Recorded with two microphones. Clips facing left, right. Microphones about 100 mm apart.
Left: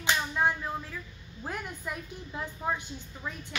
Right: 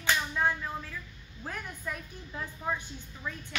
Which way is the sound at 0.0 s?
15° left (ahead or behind).